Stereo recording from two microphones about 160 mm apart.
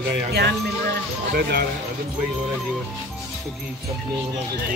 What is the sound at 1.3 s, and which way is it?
Speech, 75° right (ahead or behind).